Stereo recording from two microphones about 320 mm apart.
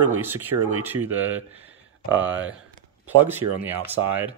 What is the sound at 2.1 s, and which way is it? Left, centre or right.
Speech, right.